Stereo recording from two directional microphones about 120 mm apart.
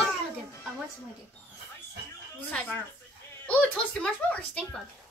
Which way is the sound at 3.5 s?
10° left (ahead or behind).